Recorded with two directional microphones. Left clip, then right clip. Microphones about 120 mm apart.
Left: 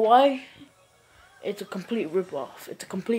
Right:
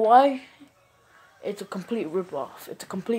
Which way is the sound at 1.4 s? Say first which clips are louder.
Even; centre (ahead or behind).